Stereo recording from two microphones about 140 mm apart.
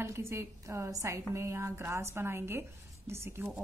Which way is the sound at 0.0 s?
20° right (ahead or behind).